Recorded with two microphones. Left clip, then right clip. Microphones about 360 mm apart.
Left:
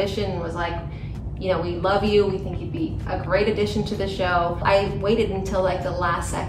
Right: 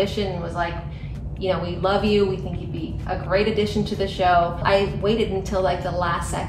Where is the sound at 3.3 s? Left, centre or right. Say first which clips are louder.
Even; centre.